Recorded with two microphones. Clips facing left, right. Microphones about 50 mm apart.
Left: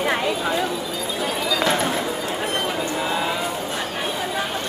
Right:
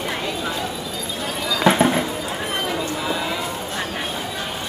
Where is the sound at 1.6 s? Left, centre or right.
Centre.